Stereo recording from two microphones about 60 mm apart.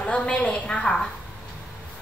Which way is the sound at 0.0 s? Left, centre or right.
Left.